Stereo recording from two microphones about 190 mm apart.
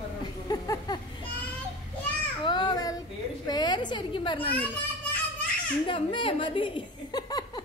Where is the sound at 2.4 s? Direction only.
25° left (ahead or behind).